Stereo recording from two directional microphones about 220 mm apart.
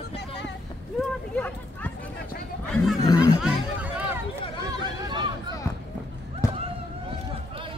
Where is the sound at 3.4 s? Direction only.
5° right (ahead or behind).